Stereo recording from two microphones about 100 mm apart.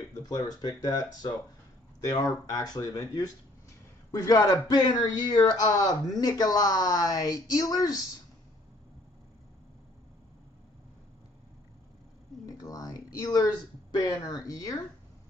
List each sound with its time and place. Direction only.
0.1 s a man's voice: 40° left (ahead or behind)
12.4 s a sound: 35° left (ahead or behind)
13.9 s a man's voice: 40° left (ahead or behind)